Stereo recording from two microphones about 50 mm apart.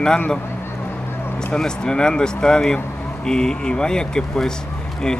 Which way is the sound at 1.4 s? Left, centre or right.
Centre.